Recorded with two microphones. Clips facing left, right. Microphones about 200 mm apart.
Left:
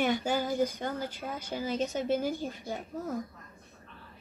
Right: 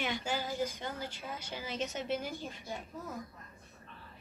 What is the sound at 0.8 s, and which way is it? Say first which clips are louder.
A woman's voice: left 6 dB; 45° left (ahead or behind).